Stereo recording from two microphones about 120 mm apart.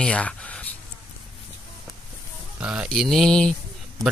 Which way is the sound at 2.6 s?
10° right (ahead or behind).